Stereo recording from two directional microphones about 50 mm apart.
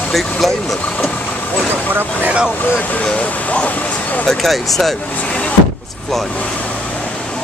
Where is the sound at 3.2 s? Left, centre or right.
Left.